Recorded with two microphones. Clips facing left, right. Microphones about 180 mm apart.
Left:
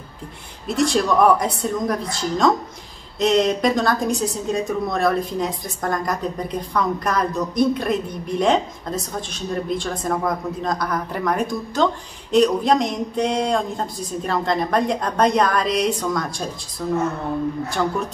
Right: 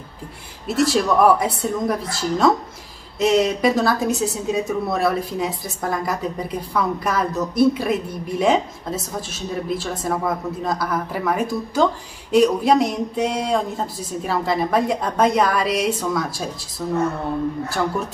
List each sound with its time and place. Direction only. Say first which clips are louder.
0.7 s a woman's voice: right 1 dB; 5° right (ahead or behind)